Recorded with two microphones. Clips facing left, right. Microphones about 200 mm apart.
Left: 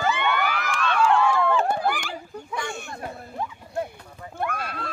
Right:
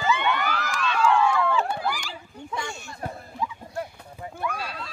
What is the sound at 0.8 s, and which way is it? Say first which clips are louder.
Run: left 1 dB; 55° left (ahead or behind).